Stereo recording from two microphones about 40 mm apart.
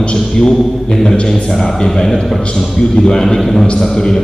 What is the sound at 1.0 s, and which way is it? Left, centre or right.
A man's voice, left.